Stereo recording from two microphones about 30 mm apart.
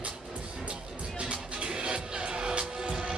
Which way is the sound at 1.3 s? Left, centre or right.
Right.